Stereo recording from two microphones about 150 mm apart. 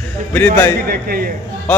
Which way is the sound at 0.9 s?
90° right.